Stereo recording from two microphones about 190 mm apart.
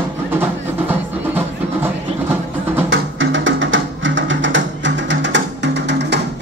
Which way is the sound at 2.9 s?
75° right (ahead or behind).